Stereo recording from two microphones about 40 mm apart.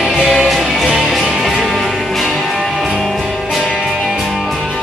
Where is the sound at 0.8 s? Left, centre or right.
Centre.